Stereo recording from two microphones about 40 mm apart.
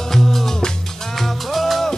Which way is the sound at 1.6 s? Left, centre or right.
Centre.